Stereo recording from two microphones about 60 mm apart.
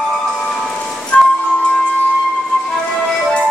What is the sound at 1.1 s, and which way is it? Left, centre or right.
Music, centre.